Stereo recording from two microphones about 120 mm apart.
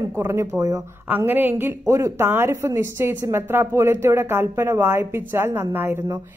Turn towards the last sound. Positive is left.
turn(degrees=-20)  # may be behind; listen again after turning